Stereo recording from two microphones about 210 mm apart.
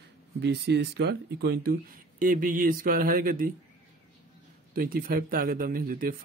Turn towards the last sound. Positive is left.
turn(degrees=-45)  # may be behind; listen again after turning